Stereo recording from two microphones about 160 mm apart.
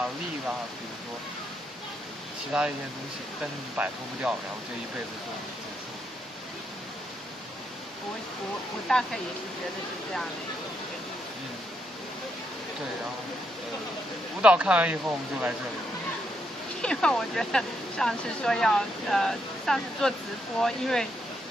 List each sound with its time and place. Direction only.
2.5 s speech: 5° right (ahead or behind)
3.7 s speech: 10° right (ahead or behind)
8.8 s speech: 5° left (ahead or behind)
14.4 s speech: 5° right (ahead or behind)
16.8 s speech: 5° left (ahead or behind)